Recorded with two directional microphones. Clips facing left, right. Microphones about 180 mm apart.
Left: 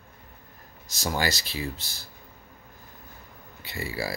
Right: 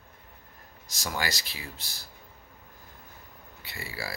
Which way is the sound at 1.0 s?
25° left (ahead or behind).